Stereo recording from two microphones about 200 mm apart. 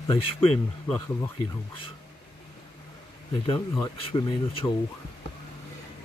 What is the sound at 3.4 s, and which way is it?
Speech, 25° left (ahead or behind).